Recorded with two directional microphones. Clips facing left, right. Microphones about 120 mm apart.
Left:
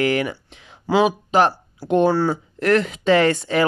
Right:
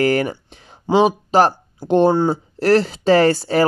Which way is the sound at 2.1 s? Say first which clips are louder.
Right 3 dB; 20° right (ahead or behind).